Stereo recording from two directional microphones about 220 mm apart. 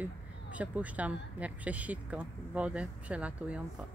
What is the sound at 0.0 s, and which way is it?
Speech, 5° right (ahead or behind).